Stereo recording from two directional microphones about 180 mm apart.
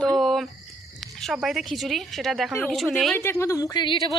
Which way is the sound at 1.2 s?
Centre (ahead or behind).